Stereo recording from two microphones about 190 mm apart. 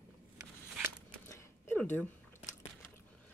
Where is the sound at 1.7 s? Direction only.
10° left (ahead or behind).